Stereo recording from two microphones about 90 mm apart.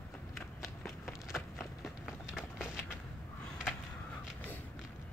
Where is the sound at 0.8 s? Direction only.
Centre (ahead or behind).